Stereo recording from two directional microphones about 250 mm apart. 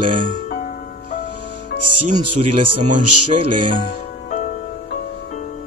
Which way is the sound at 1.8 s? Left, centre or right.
Right.